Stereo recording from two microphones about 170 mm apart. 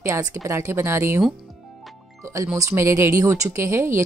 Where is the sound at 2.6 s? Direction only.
15° right (ahead or behind).